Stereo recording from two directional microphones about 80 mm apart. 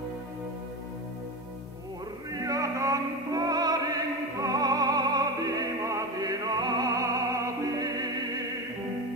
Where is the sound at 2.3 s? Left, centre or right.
Right.